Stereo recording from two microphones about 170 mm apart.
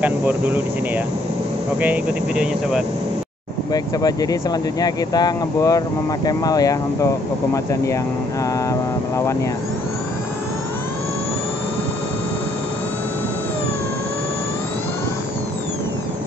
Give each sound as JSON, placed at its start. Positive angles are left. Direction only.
{"t": 0.0, "sound": "speech", "side_deg": -10}
{"t": 3.7, "sound": "speech", "side_deg": 20}